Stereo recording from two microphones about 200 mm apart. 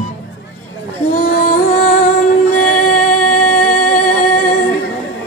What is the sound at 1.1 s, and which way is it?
Music, 45° left (ahead or behind).